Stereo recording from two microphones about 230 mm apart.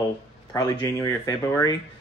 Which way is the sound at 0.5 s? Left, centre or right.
Centre.